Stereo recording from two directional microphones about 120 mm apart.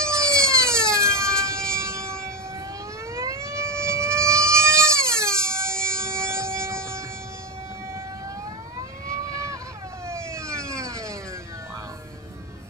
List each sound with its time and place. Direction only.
0.0 s emergency vehicle: 25° right (ahead or behind)
3.2 s a sound: 25° right (ahead or behind)
9.0 s vehicle: 25° right (ahead or behind)